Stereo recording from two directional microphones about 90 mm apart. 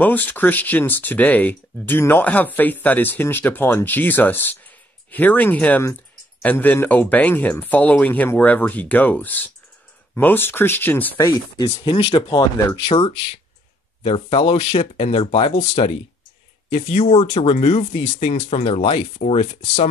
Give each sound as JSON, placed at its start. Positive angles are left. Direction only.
{"t": 0.0, "sound": "speech", "side_deg": 20}
{"t": 11.1, "sound": "speech", "side_deg": 35}
{"t": 11.8, "sound": "speech", "side_deg": 70}
{"t": 12.8, "sound": "speech", "side_deg": 90}
{"t": 18.6, "sound": "speech", "side_deg": 90}